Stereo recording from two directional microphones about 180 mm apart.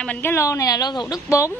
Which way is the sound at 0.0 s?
10° left (ahead or behind).